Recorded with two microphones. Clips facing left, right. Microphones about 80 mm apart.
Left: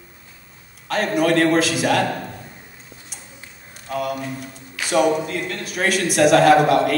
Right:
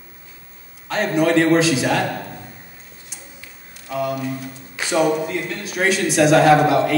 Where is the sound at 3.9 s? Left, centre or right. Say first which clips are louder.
Right 2 dB; centre.